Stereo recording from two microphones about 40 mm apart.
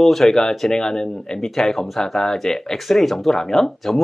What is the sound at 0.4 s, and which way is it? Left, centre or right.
Speech, centre.